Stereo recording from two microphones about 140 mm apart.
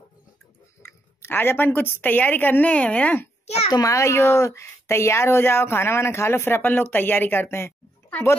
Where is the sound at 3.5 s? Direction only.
45° left (ahead or behind).